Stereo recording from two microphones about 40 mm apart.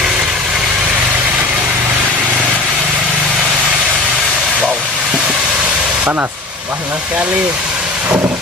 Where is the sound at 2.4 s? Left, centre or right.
Right.